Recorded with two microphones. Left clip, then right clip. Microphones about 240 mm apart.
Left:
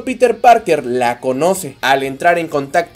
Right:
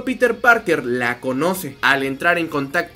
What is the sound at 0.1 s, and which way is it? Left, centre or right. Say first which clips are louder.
A man's voice: left 5 dB; centre.